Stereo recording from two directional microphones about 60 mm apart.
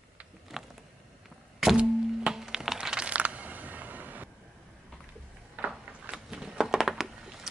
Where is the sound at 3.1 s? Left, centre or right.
Right.